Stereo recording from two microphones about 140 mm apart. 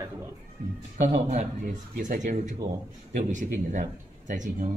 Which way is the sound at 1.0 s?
65° right (ahead or behind).